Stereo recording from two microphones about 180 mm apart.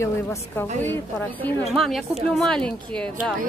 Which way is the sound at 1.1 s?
Centre (ahead or behind).